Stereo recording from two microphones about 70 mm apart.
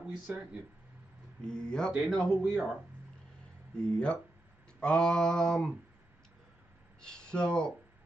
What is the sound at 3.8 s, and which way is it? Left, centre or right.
Speech, centre.